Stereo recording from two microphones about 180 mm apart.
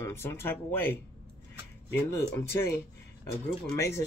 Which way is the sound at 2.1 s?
15° left (ahead or behind).